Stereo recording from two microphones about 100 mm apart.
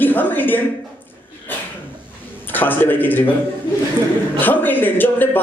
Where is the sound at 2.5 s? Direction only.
20° left (ahead or behind).